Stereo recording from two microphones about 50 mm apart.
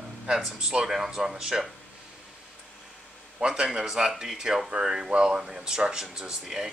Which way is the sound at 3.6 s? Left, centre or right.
Centre.